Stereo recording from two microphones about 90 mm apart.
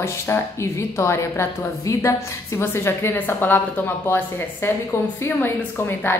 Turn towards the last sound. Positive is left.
turn(degrees=25)  # may be behind; listen again after turning